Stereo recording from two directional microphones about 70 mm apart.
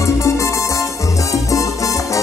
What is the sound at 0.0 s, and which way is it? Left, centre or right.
Music, left.